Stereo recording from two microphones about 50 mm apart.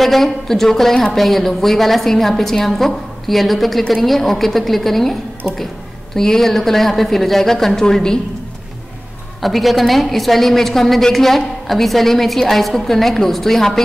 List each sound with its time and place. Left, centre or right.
0.0 s a woman's voice: centre
6.1 s a woman's voice: centre
9.4 s a woman's voice: centre